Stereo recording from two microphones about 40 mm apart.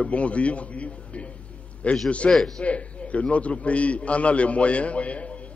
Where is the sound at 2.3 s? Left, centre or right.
Centre.